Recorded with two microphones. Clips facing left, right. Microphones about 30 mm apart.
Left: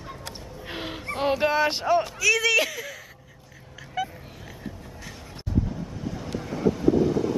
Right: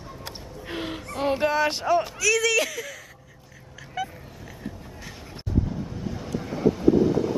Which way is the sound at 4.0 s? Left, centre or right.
Centre.